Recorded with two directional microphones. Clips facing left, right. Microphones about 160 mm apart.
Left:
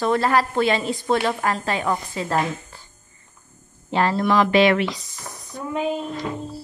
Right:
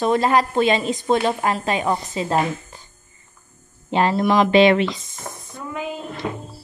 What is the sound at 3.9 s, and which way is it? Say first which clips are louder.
Speech: right 2 dB; 15° right (ahead or behind).